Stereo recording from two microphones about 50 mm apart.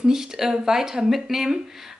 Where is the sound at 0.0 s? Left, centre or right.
Centre.